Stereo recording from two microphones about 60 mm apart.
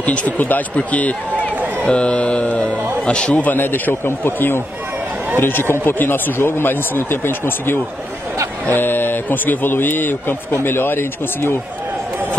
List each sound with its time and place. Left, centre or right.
0.0 s a man's voice: left
3.4 s a man's voice: left